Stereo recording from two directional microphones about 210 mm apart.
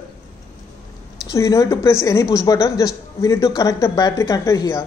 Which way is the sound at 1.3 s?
15° left (ahead or behind).